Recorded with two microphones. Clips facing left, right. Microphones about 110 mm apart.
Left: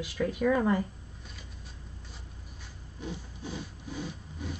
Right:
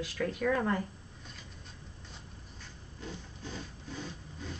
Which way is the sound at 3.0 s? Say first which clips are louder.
Left 4 dB; 15° left (ahead or behind).